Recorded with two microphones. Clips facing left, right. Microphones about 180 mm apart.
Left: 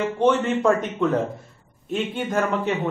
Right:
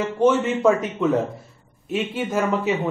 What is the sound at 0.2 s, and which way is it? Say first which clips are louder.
Speech: right 2 dB; 5° right (ahead or behind).